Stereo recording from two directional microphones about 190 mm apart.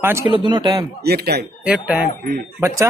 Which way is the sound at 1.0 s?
55° right (ahead or behind).